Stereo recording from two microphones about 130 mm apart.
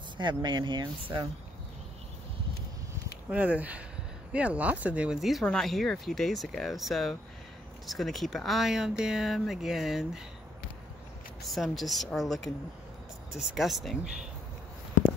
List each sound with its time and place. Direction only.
0.2 s speech: 35° right (ahead or behind)
3.3 s speech: 10° right (ahead or behind)
11.4 s speech: centre (ahead or behind)